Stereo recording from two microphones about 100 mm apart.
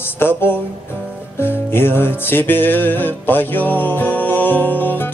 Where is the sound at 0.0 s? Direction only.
25° left (ahead or behind).